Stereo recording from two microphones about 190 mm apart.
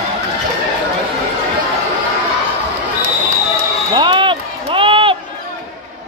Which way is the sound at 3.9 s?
25° right (ahead or behind).